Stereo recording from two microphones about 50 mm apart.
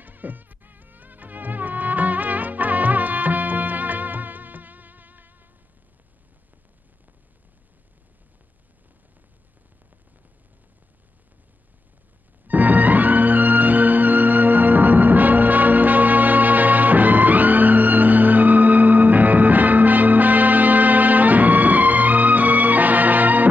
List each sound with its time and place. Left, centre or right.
0.0 s music: right
12.4 s music: right